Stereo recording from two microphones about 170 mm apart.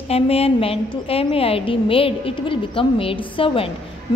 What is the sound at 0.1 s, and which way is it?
A woman's voice, 35° left (ahead or behind).